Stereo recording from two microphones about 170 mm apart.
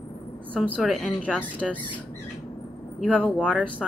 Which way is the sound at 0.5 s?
5° left (ahead or behind).